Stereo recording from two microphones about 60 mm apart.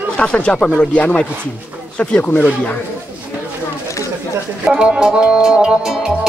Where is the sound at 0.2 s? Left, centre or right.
Centre.